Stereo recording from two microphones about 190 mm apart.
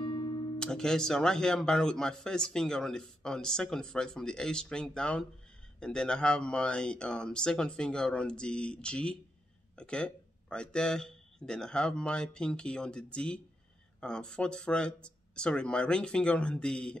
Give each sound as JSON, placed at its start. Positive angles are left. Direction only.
{"t": 0.0, "sound": "guitar", "side_deg": 30}
{"t": 0.6, "sound": "speech", "side_deg": 5}